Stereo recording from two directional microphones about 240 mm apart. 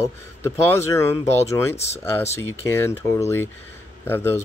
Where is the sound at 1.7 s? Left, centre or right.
Left.